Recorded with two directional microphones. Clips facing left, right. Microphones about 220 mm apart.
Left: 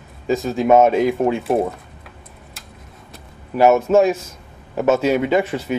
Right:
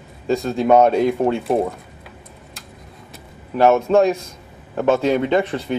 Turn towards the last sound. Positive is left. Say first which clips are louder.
# even
turn(degrees=5)  # may be behind; listen again after turning